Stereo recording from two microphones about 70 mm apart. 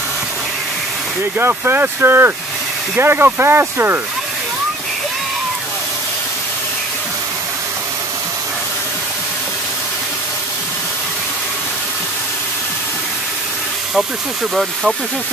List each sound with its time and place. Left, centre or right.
1.4 s speech: right
14.5 s speech: centre